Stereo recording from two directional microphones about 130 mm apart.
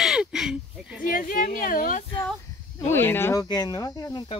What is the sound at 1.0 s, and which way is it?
Speech, 90° left.